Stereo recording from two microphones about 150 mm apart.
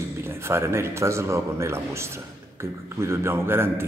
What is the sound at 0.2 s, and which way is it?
Speech, 15° right (ahead or behind).